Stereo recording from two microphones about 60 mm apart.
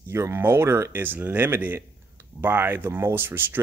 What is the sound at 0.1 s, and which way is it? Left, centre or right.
Speech, right.